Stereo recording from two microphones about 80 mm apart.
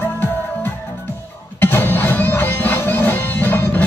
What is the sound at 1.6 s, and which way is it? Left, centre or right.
Music, left.